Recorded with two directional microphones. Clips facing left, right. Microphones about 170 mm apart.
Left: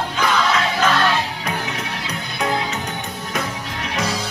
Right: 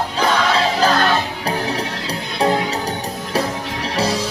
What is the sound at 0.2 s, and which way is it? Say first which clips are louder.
Music: right 2 dB; 30° right (ahead or behind).